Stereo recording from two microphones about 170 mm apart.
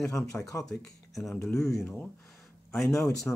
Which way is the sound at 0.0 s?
20° left (ahead or behind).